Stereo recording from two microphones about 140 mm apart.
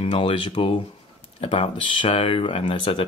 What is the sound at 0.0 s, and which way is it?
Speech, 40° left (ahead or behind).